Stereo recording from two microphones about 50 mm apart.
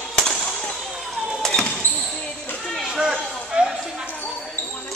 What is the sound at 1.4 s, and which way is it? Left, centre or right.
Basketball bounce, centre.